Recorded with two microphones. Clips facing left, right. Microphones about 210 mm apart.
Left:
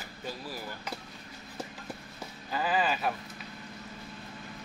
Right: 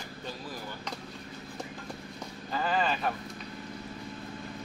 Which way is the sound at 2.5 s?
5° left (ahead or behind).